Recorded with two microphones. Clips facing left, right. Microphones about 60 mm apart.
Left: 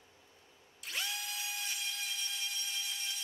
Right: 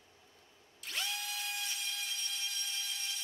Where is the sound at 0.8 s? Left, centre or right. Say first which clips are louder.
Even; centre.